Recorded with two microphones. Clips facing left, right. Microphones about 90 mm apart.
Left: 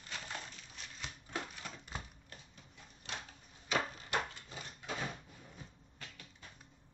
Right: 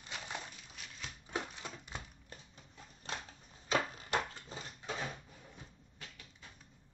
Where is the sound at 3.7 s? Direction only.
35° right (ahead or behind).